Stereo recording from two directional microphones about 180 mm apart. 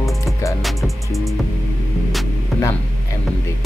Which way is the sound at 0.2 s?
15° left (ahead or behind).